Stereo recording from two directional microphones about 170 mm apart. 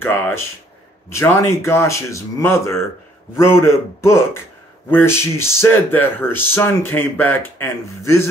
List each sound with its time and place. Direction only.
0.0 s speech: 15° left (ahead or behind)